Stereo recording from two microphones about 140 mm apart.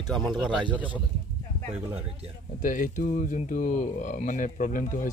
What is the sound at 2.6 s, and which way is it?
A man's voice, 75° left (ahead or behind).